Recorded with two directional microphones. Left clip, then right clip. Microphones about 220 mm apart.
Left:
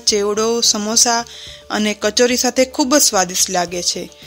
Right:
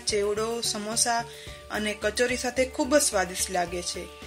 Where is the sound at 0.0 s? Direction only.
45° left (ahead or behind).